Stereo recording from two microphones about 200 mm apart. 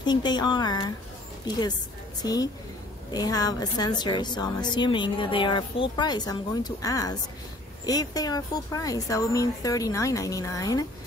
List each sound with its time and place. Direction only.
0.0 s a woman's voice: 20° left (ahead or behind)